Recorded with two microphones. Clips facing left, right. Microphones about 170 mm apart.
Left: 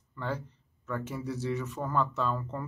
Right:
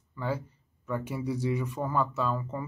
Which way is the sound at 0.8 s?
10° right (ahead or behind).